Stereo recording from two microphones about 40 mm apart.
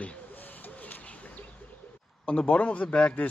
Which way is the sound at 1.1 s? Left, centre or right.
Left.